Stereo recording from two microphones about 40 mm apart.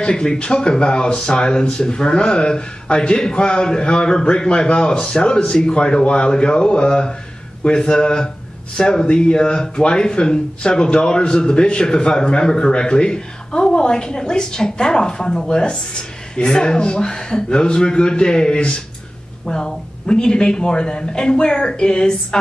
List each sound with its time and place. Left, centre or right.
0.0 s speech: left